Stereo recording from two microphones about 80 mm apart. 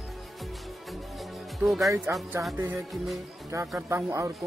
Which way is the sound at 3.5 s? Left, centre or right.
Right.